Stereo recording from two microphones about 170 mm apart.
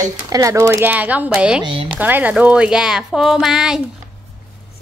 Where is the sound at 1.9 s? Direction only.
10° right (ahead or behind).